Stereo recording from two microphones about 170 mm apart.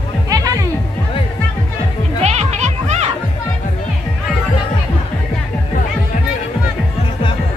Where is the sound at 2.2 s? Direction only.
40° right (ahead or behind).